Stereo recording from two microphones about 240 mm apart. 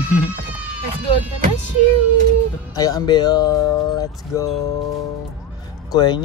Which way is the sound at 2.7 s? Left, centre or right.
Centre.